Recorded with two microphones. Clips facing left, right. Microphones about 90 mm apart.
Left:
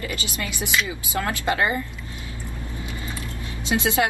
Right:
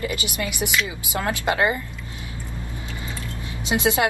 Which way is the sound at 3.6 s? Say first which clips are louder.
Right 1 dB; 20° right (ahead or behind).